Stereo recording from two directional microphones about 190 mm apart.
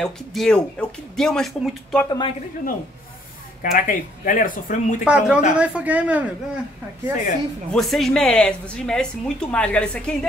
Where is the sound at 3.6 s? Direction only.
45° left (ahead or behind).